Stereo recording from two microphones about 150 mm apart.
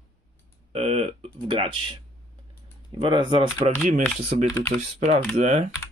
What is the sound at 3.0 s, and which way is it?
Speech, 30° right (ahead or behind).